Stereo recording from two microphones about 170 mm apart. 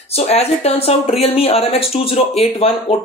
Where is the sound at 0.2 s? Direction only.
40° left (ahead or behind).